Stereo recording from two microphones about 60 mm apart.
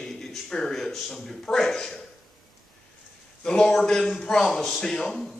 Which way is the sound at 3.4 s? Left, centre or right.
Centre.